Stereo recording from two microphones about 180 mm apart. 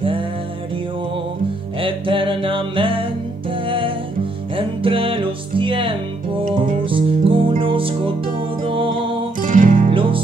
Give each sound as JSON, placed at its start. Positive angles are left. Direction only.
{"t": 1.8, "sound": "music", "side_deg": -30}
{"t": 9.4, "sound": "music", "side_deg": -45}
{"t": 9.8, "sound": "music", "side_deg": -30}